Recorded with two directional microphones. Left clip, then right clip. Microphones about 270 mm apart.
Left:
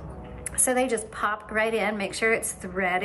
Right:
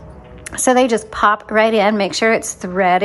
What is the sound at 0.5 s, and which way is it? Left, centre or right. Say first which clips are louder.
A woman's voice: right 11 dB; right.